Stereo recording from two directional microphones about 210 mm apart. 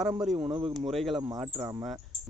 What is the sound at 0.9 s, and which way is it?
Speech, centre (ahead or behind).